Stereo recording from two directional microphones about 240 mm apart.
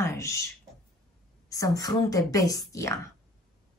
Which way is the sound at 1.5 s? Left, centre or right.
Centre.